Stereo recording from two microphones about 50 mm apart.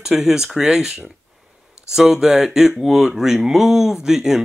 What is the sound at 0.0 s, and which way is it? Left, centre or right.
Speech, centre.